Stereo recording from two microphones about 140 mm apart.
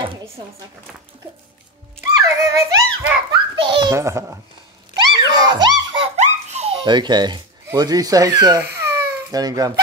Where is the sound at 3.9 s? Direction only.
20° right (ahead or behind).